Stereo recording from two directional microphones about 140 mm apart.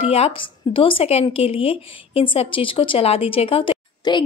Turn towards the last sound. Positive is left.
turn(degrees=35)  # may be behind; listen again after turning